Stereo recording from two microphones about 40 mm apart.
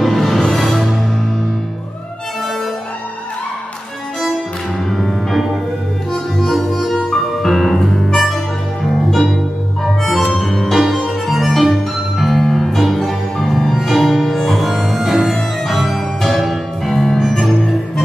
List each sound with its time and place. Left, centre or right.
0.0 s music: centre
4.8 s music: centre
6.5 s music: centre
10.3 s music: centre